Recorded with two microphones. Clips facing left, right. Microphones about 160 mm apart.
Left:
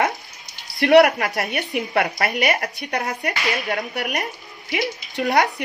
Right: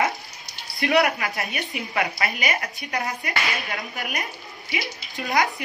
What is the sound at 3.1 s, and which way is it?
Speech, 70° left (ahead or behind).